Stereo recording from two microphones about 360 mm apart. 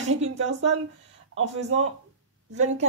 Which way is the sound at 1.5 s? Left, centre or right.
Centre.